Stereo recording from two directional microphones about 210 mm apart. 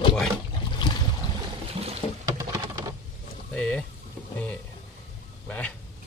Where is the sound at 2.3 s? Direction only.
15° right (ahead or behind).